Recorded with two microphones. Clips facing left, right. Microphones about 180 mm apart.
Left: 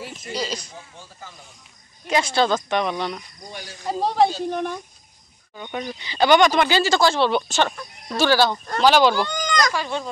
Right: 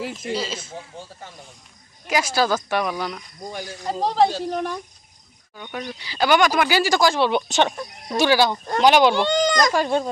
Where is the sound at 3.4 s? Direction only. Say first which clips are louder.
Right 7 dB; 45° right (ahead or behind).